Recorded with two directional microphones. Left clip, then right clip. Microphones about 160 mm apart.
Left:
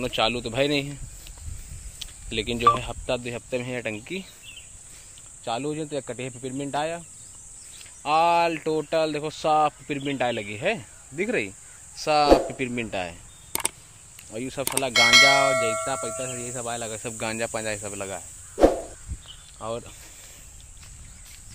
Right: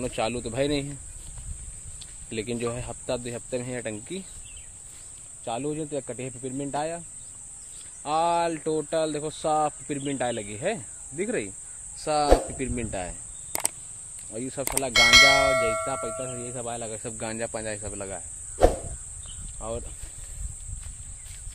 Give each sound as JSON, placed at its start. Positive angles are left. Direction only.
{"t": 0.0, "sound": "speech", "side_deg": 10}
{"t": 2.0, "sound": "speech", "side_deg": 5}
{"t": 5.4, "sound": "speech", "side_deg": 15}
{"t": 14.3, "sound": "speech", "side_deg": 20}
{"t": 14.9, "sound": "speech", "side_deg": 0}
{"t": 15.7, "sound": "speech", "side_deg": 15}
{"t": 19.6, "sound": "speech", "side_deg": 25}